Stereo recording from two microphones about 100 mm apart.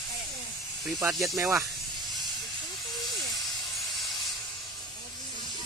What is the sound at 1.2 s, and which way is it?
Speech, 30° right (ahead or behind).